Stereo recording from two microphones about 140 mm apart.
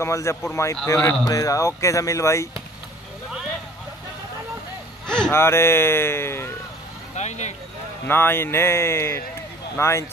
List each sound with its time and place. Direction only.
0.0 s speech: 20° left (ahead or behind)
5.0 s a sound: 5° left (ahead or behind)
5.3 s speech: 20° left (ahead or behind)
7.2 s vehicle: 55° left (ahead or behind)
8.1 s speech: 15° left (ahead or behind)